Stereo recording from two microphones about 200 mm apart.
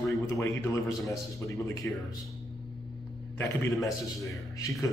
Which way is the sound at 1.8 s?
10° left (ahead or behind).